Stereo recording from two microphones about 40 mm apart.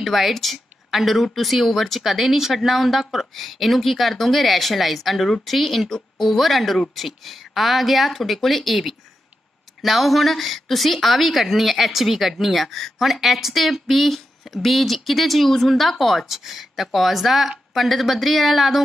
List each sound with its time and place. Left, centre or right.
0.0 s speech: centre
13.0 s speech: centre